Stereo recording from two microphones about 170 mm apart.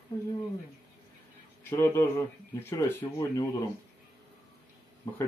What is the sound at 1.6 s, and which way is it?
Speech, 15° left (ahead or behind).